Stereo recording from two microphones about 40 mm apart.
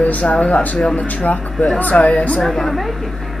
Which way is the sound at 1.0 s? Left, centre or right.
Left.